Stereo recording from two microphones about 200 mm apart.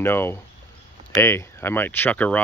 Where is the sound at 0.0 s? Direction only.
10° left (ahead or behind).